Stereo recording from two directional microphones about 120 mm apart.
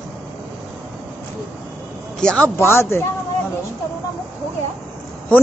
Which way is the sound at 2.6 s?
20° left (ahead or behind).